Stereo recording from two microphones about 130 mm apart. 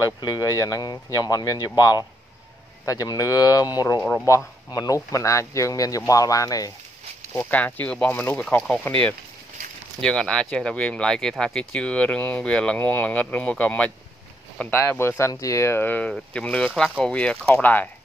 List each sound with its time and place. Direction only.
0.0 s speech: 30° left (ahead or behind)
7.3 s speech: 15° left (ahead or behind)
10.0 s speech: 5° left (ahead or behind)